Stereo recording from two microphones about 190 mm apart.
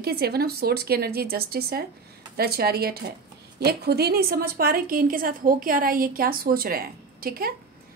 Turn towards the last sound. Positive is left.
turn(degrees=-50)  # may be behind; listen again after turning